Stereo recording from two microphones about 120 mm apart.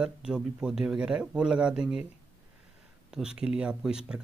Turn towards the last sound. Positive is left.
turn(degrees=-5)  # may be behind; listen again after turning